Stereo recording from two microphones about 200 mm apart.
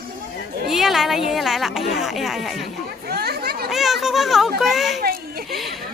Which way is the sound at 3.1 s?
50° right (ahead or behind).